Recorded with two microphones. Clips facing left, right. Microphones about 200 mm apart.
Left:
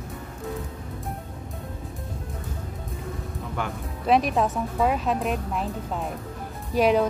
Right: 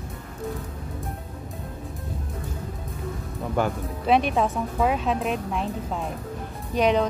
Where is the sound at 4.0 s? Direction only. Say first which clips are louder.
Even; centre (ahead or behind).